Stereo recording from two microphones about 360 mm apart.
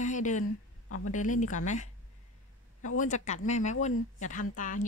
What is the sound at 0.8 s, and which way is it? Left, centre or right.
Speech, left.